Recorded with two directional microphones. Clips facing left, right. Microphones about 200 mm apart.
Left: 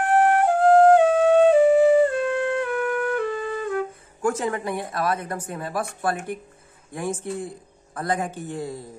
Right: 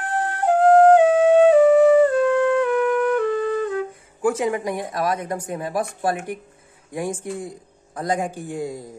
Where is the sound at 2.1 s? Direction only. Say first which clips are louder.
Right 6 dB; 15° left (ahead or behind).